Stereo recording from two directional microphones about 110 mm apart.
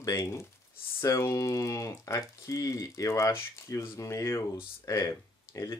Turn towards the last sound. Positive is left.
turn(degrees=25)  # may be behind; listen again after turning